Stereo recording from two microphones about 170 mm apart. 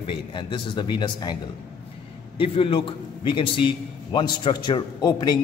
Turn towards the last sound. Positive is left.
turn(degrees=25)  # may be behind; listen again after turning